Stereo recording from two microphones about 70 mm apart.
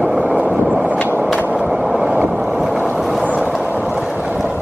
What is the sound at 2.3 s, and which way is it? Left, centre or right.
Boat, centre.